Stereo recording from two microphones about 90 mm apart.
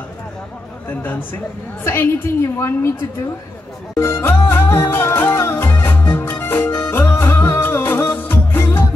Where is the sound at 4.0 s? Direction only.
25° left (ahead or behind).